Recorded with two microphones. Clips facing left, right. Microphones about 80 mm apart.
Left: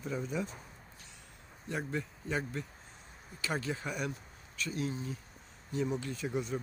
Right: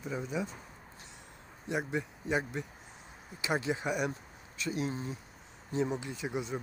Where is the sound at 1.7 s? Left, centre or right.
Centre.